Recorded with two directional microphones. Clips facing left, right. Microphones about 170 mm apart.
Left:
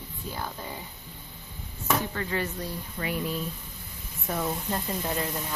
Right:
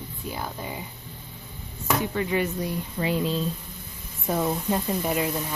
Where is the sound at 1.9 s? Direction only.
15° right (ahead or behind).